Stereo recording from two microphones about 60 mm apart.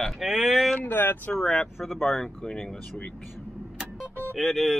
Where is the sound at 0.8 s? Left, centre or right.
Left.